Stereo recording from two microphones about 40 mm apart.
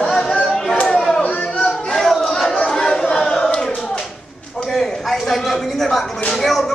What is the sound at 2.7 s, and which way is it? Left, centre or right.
Chatter, centre.